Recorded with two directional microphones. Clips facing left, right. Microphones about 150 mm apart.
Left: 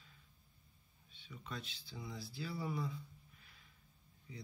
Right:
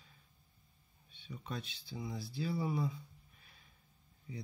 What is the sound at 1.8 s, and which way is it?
Speech, 20° right (ahead or behind).